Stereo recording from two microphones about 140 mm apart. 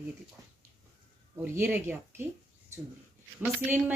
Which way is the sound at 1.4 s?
15° right (ahead or behind).